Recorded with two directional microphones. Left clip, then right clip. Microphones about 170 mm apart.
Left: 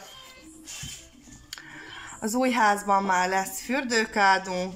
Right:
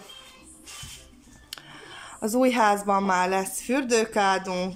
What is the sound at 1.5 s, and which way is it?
Speech, 15° right (ahead or behind).